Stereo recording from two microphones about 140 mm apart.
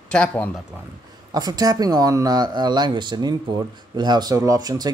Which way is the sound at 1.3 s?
25° right (ahead or behind).